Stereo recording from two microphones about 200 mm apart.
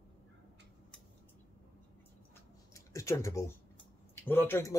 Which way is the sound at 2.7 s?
15° left (ahead or behind).